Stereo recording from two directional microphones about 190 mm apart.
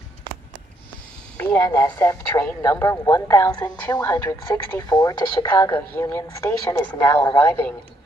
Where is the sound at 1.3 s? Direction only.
15° left (ahead or behind).